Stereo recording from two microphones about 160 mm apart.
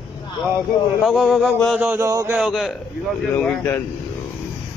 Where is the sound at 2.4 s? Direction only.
Centre (ahead or behind).